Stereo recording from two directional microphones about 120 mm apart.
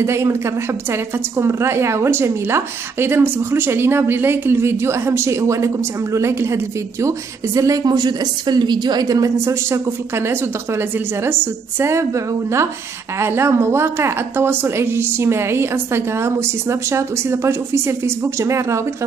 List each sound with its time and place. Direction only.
0.0 s a woman's voice: 20° right (ahead or behind)